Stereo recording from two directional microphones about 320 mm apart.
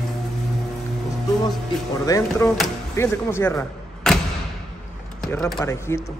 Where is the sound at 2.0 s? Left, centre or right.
Centre.